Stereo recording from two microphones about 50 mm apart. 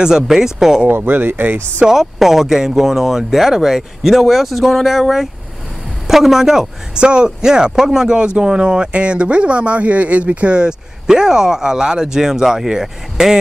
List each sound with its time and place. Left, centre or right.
0.0 s speech: centre
0.9 s speech: right
1.9 s speech: centre